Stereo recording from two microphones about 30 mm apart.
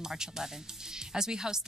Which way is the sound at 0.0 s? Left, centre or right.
Centre.